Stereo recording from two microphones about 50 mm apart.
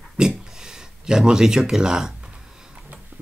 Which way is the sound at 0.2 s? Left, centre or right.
Centre.